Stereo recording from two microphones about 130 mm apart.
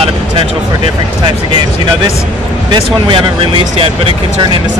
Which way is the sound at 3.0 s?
45° right (ahead or behind).